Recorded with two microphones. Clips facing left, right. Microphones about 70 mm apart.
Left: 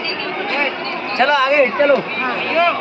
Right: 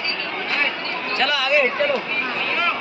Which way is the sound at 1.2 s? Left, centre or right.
Left.